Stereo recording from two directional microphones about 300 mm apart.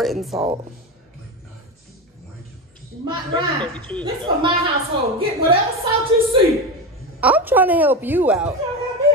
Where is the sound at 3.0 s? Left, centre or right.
Centre.